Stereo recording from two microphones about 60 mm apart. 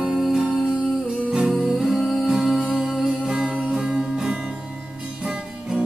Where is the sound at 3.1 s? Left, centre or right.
Centre.